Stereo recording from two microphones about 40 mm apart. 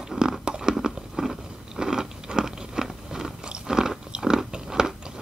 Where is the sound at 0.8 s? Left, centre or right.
Centre.